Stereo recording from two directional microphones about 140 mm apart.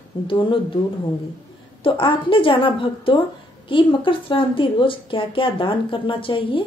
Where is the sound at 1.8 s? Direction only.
40° left (ahead or behind).